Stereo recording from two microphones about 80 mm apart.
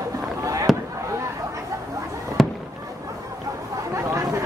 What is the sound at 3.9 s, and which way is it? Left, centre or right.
Chatter, right.